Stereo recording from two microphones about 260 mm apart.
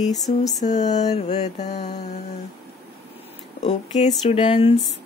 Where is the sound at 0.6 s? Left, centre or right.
Left.